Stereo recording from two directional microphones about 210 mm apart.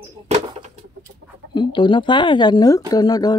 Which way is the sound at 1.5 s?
20° left (ahead or behind).